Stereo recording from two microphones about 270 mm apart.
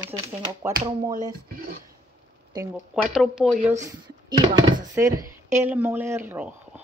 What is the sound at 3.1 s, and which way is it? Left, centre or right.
Speech, centre.